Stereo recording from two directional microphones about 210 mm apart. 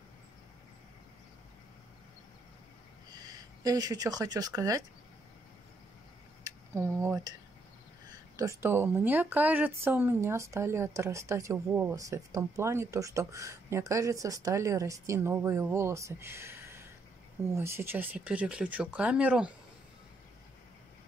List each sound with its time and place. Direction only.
3.1 s speech: 20° right (ahead or behind)
6.4 s speech: 15° right (ahead or behind)
8.4 s speech: 10° right (ahead or behind)